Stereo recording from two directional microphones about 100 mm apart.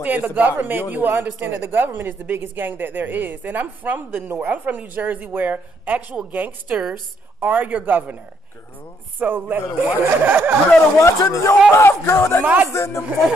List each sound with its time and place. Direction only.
0.0 s speech: 15° right (ahead or behind)
9.2 s speech: 20° right (ahead or behind)
11.0 s speech: 30° left (ahead or behind)
12.4 s speech: 15° right (ahead or behind)
12.7 s speech: 25° left (ahead or behind)